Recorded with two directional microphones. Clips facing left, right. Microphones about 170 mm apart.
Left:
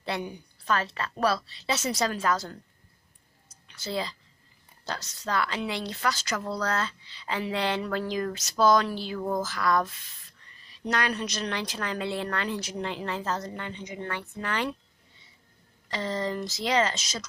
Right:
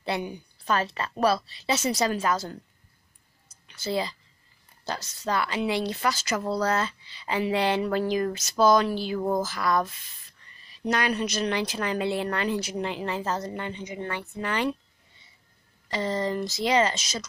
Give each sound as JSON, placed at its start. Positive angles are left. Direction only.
{"t": 0.0, "sound": "a sound", "side_deg": -5}
{"t": 0.7, "sound": "a woman's voice", "side_deg": -20}
{"t": 1.7, "sound": "a woman's voice", "side_deg": 0}
{"t": 3.6, "sound": "a woman's voice", "side_deg": -5}
{"t": 10.9, "sound": "a woman's voice", "side_deg": -10}
{"t": 15.9, "sound": "speech", "side_deg": -5}